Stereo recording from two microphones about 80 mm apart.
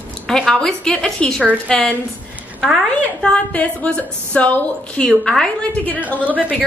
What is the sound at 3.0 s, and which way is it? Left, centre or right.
A woman's voice, centre.